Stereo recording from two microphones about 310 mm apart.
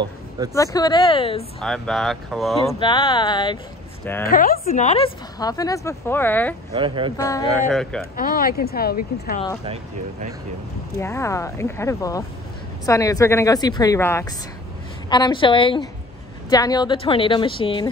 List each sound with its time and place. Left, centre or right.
0.6 s a woman's voice: centre
1.6 s speech: centre
2.8 s a woman's voice: centre
4.2 s a woman's voice: left; by 6.5 s centre
6.7 s speech: centre
7.2 s a woman's voice: centre
8.2 s speech: left
11.0 s a woman's voice: centre